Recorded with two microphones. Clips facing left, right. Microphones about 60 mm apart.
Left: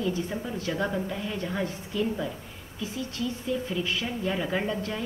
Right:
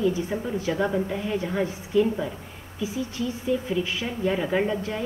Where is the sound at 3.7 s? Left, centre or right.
Centre.